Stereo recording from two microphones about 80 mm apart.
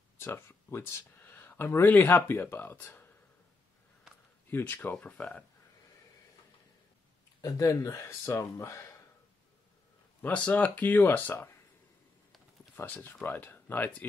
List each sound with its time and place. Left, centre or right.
0.2 s speech: left
4.5 s speech: left
5.0 s speech: centre
7.4 s speech: left
10.2 s speech: centre
12.7 s speech: left